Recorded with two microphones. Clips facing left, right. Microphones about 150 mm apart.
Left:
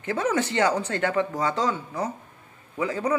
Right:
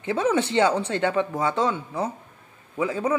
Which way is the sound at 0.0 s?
20° right (ahead or behind).